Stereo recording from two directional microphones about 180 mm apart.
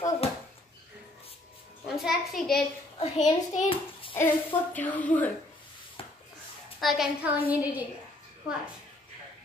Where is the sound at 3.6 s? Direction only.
30° left (ahead or behind).